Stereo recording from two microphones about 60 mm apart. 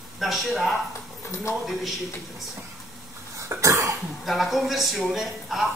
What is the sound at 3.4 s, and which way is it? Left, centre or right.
Cough, right.